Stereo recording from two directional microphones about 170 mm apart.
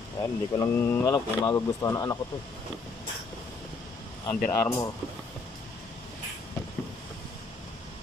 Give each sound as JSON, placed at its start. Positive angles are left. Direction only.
{"t": 0.2, "sound": "speech", "side_deg": 15}
{"t": 1.1, "sound": "speech", "side_deg": 25}
{"t": 4.3, "sound": "speech", "side_deg": 15}